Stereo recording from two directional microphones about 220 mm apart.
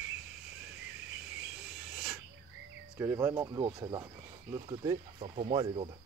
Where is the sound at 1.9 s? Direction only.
Centre (ahead or behind).